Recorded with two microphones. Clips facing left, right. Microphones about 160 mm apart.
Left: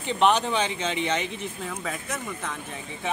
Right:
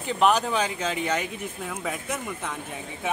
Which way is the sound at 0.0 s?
5° right (ahead or behind).